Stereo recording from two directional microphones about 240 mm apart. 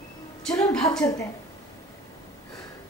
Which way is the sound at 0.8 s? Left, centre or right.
Centre.